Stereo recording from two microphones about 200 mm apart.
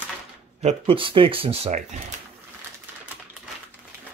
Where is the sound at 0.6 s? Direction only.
25° right (ahead or behind).